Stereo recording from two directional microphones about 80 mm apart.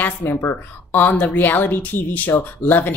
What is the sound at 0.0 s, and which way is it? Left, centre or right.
Speech, left.